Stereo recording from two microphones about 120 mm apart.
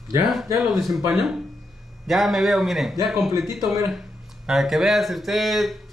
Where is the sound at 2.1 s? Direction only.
Centre (ahead or behind).